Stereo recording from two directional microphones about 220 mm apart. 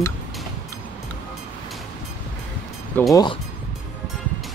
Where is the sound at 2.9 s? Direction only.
5° left (ahead or behind).